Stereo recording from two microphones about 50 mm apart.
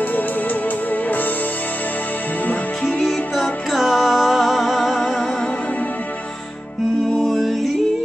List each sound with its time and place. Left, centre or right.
2.4 s music: left
3.3 s music: centre
7.2 s music: centre